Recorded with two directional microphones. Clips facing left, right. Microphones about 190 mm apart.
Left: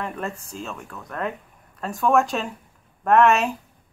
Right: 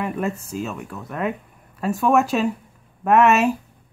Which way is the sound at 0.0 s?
5° right (ahead or behind).